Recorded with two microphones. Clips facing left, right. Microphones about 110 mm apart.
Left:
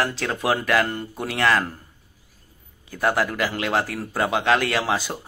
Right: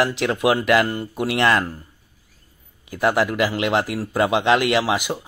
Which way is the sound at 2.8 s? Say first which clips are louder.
Right 3 dB; 15° right (ahead or behind).